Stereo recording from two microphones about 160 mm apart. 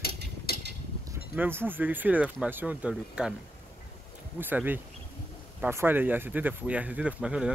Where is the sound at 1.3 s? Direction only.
10° right (ahead or behind).